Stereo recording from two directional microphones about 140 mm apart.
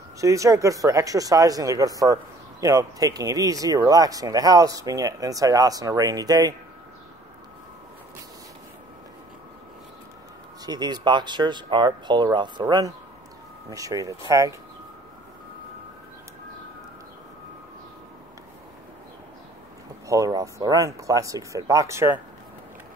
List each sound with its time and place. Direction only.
0.2 s speech: 20° right (ahead or behind)
10.6 s speech: 30° right (ahead or behind)
20.1 s speech: 25° right (ahead or behind)